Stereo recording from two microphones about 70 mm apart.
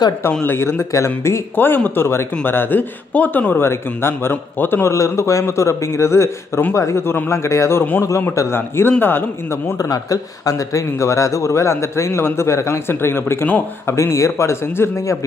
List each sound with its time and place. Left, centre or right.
0.4 s speech: left
4.9 s speech: left
9.8 s speech: left
13.9 s speech: left